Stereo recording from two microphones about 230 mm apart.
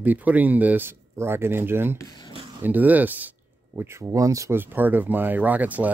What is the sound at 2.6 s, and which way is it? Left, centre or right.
Speech, centre.